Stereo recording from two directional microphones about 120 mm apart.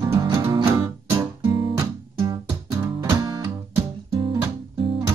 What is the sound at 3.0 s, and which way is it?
Music, 30° right (ahead or behind).